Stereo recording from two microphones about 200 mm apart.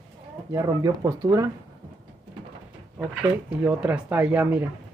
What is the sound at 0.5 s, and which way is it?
Speech, 15° right (ahead or behind).